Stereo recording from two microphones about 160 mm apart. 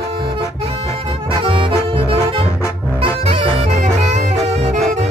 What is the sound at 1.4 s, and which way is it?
Music, 30° right (ahead or behind).